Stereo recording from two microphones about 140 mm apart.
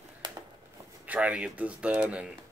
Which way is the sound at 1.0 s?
10° right (ahead or behind).